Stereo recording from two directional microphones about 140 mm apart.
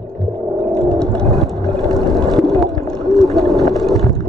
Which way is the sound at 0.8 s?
5° left (ahead or behind).